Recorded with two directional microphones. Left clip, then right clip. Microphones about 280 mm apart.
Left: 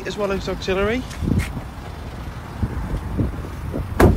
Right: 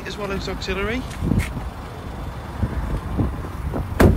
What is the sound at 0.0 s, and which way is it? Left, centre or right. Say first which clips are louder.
Speech: left 4 dB; centre.